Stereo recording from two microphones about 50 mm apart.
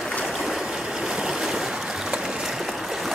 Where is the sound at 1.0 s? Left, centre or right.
Centre.